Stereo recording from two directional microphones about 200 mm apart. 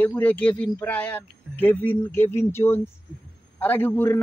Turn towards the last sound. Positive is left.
turn(degrees=10)  # may be behind; listen again after turning